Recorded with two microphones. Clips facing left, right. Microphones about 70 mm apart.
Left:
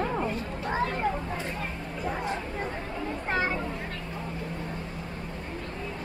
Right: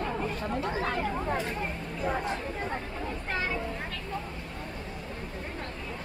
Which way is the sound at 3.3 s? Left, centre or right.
Left.